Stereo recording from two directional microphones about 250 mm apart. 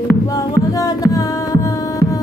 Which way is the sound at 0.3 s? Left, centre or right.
Centre.